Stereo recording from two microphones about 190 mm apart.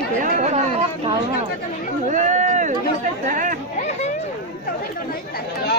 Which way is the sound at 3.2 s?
40° right (ahead or behind).